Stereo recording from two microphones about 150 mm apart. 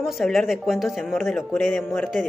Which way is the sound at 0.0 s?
Centre (ahead or behind).